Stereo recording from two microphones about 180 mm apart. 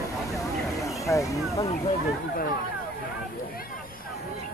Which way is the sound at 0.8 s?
15° left (ahead or behind).